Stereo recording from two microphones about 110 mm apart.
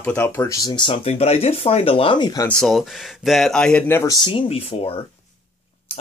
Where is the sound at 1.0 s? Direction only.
70° left (ahead or behind); by 2.3 s 50° left (ahead or behind).